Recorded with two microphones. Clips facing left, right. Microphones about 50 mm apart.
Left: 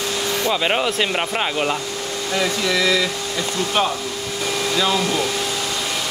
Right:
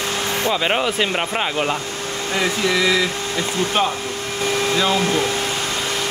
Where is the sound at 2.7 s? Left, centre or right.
Centre.